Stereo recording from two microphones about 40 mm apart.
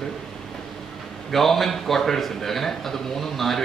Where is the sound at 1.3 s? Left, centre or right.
Centre.